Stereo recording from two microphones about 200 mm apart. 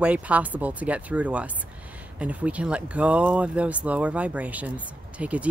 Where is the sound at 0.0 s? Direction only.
5° right (ahead or behind).